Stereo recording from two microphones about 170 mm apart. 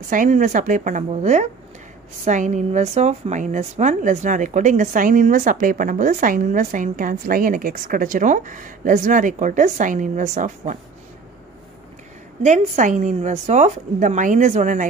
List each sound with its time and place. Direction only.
0.1 s speech: 50° right (ahead or behind)
12.4 s speech: 45° right (ahead or behind)